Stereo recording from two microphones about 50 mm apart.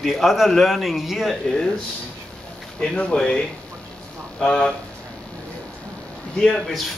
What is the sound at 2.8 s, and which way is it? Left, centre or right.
Speech, centre.